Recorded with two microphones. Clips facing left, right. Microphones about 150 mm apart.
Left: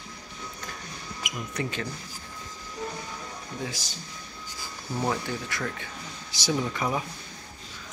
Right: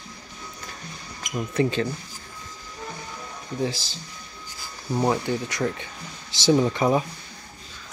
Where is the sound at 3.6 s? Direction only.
30° right (ahead or behind).